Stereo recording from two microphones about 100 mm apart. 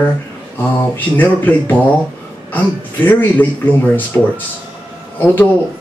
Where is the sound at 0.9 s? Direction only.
20° left (ahead or behind).